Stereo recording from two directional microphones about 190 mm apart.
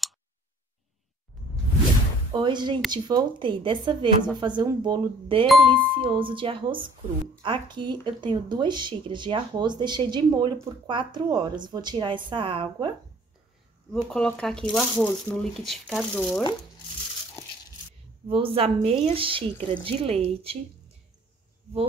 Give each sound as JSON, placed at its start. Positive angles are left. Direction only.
{"t": 2.3, "sound": "speech", "side_deg": -25}
{"t": 14.0, "sound": "speech", "side_deg": 5}
{"t": 18.3, "sound": "speech", "side_deg": -30}